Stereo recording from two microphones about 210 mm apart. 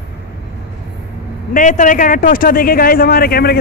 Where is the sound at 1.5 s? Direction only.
35° left (ahead or behind).